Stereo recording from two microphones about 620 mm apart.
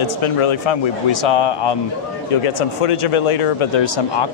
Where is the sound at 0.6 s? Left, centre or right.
Left.